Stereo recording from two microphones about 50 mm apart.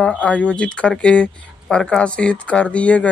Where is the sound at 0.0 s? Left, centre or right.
Left.